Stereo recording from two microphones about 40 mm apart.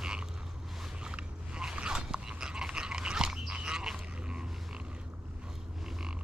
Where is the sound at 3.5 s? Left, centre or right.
Centre.